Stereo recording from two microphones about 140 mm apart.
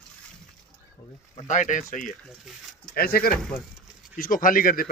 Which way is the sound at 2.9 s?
90° left.